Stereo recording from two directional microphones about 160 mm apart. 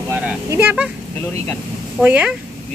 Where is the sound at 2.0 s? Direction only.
10° right (ahead or behind).